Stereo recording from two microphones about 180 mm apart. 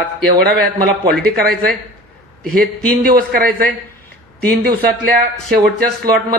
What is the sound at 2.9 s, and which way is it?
A man's voice, 55° right (ahead or behind).